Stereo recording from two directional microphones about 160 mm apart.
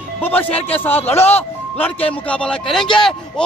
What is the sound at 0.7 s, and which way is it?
A man's voice, 10° left (ahead or behind).